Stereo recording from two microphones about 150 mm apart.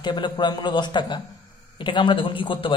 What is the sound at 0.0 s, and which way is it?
A man's voice, 30° left (ahead or behind).